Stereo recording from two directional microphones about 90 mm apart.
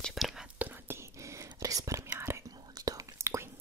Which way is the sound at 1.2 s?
35° right (ahead or behind).